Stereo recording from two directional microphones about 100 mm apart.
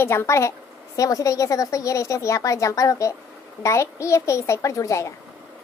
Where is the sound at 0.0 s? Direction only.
25° left (ahead or behind).